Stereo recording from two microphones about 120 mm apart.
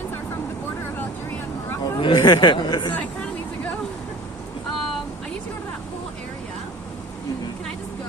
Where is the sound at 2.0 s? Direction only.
45° left (ahead or behind).